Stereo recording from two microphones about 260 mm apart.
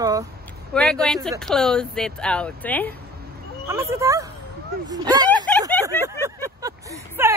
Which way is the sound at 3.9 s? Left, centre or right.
Centre.